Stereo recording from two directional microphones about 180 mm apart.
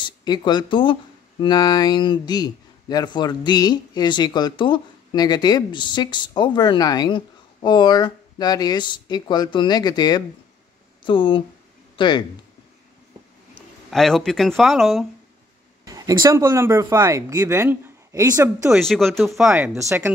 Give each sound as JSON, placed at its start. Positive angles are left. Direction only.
{"t": 0.0, "sound": "speech", "side_deg": 25}
{"t": 13.8, "sound": "speech", "side_deg": 0}
{"t": 15.8, "sound": "speech", "side_deg": -20}
{"t": 18.9, "sound": "speech", "side_deg": 0}
{"t": 19.5, "sound": "speech", "side_deg": -10}